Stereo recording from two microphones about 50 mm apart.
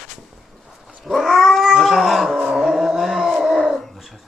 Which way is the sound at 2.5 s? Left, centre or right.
Centre.